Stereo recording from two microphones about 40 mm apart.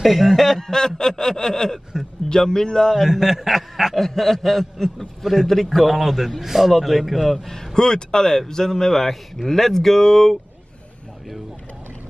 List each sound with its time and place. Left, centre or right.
0.0 s a man's voice: centre
0.7 s a man's voice: centre
3.1 s speech: centre
3.9 s a man's voice: centre
5.2 s a man's voice: centre
7.7 s a man's voice: centre